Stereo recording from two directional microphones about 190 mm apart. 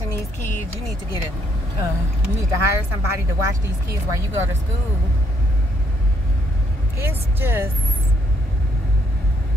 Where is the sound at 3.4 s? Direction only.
15° right (ahead or behind).